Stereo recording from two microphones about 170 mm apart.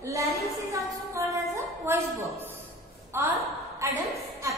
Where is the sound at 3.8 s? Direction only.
20° right (ahead or behind).